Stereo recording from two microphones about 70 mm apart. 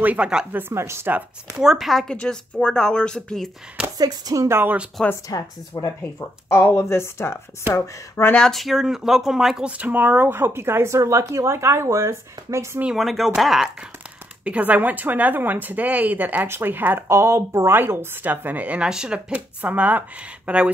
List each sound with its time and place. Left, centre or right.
0.0 s a woman's voice: right
1.6 s speech: centre
2.1 s speech: centre
4.0 s speech: right
4.5 s speech: right
5.0 s speech: centre
5.7 s speech: left
6.1 s speech: left
8.4 s speech: centre
9.7 s speech: right
12.9 s speech: centre
14.4 s a woman's voice: right
17.1 s speech: right
17.7 s a woman's voice: right